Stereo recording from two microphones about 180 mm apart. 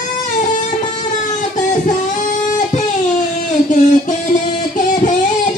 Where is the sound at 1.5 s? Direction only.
45° left (ahead or behind).